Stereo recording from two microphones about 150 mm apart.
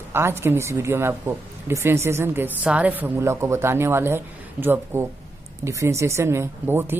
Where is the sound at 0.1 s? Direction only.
15° right (ahead or behind).